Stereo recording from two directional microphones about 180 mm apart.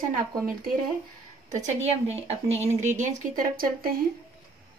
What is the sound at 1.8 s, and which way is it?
Speech, 35° right (ahead or behind).